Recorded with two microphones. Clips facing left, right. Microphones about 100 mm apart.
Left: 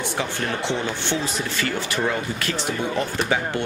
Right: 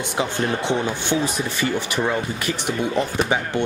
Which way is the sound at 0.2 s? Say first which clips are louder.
Right 6 dB; 15° right (ahead or behind).